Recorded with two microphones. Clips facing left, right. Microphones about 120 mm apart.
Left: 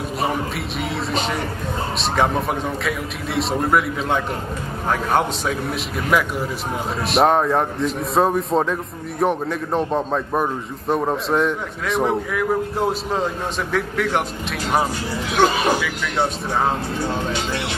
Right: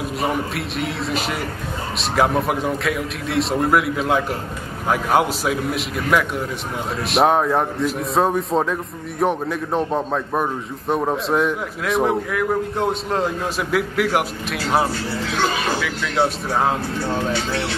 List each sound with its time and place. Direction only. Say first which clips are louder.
0.2 s a man's voice: even; centre (ahead or behind)
15.0 s speech: left 3 dB; 15° left (ahead or behind)
16.2 s a man's voice: right 2 dB; 5° right (ahead or behind)
17.3 s speech: right 1 dB; 15° left (ahead or behind)